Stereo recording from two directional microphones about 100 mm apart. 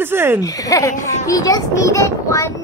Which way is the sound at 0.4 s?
35° left (ahead or behind).